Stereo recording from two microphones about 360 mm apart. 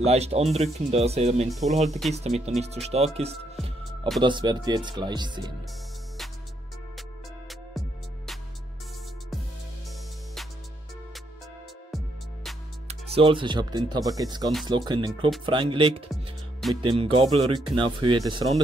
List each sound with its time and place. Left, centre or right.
0.0 s speech: centre
1.5 s speech: centre
2.1 s speech: centre
7.0 s music: centre
12.8 s speech: centre